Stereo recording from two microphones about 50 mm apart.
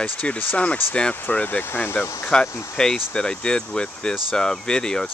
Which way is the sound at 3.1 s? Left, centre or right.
Centre.